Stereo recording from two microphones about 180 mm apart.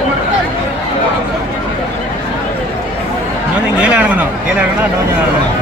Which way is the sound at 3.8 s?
10° right (ahead or behind).